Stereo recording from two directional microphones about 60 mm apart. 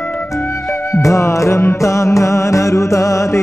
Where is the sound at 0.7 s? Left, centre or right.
Left.